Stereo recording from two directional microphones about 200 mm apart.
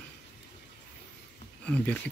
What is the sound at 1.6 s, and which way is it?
Speech, 5° left (ahead or behind).